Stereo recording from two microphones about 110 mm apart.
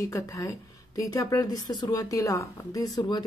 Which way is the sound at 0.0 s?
30° left (ahead or behind).